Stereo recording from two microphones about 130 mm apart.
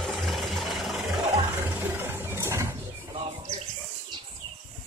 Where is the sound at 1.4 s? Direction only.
15° right (ahead or behind).